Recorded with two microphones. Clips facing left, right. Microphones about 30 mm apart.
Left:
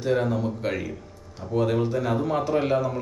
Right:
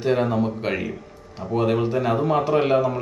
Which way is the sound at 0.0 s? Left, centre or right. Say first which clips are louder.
Right 3 dB; right.